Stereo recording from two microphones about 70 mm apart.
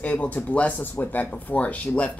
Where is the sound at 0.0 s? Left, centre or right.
Left.